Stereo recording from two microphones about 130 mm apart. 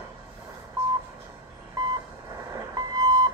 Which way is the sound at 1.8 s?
30° right (ahead or behind).